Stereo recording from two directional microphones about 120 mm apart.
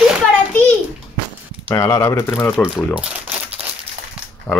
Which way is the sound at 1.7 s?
25° left (ahead or behind).